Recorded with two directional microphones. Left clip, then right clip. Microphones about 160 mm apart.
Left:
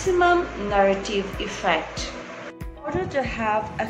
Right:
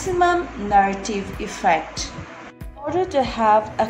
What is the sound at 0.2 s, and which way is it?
A woman's voice, 45° right (ahead or behind).